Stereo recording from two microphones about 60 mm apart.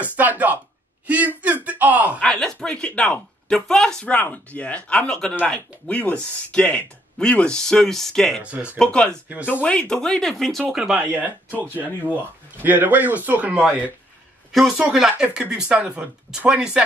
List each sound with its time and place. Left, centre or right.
0.0 s speech: right
1.0 s a sound: right
2.2 s speech: centre
4.0 s speech: left; by 8.4 s centre
8.4 s speech: right
8.7 s speech: centre
9.9 s speech: centre
10.7 s speech: centre
11.0 s speech: right
12.6 s speech: right
14.5 s speech: centre